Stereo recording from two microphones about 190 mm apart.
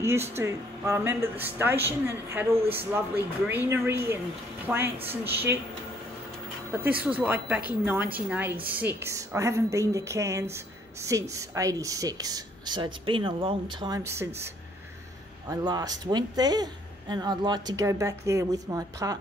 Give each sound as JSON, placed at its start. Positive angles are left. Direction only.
{"t": 0.4, "sound": "speech", "side_deg": -15}
{"t": 6.7, "sound": "a woman's voice", "side_deg": -10}
{"t": 15.4, "sound": "speech", "side_deg": -20}